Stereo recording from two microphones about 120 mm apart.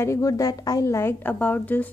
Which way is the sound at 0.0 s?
25° left (ahead or behind).